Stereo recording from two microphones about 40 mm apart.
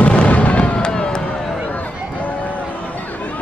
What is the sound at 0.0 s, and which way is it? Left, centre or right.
Fireworks, left.